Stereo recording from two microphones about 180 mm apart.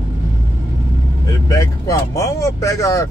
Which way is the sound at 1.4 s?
20° left (ahead or behind).